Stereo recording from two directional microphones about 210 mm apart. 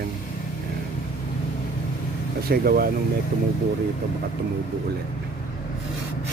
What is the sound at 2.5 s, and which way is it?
Speech, 45° right (ahead or behind).